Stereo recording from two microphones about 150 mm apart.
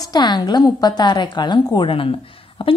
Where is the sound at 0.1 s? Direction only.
30° left (ahead or behind).